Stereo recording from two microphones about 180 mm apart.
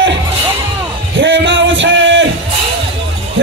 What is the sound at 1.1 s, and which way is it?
Music, 90° right.